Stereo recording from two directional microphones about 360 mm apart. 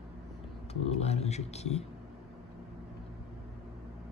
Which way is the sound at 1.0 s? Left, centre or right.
Centre.